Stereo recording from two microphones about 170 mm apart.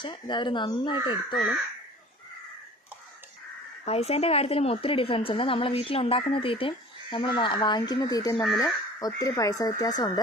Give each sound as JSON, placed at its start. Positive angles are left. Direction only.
{"t": 0.0, "sound": "speech", "side_deg": 25}
{"t": 1.3, "sound": "speech", "side_deg": 0}
{"t": 3.8, "sound": "a woman's voice", "side_deg": 35}